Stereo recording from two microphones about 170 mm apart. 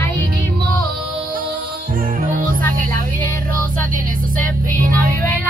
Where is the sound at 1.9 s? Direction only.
55° right (ahead or behind).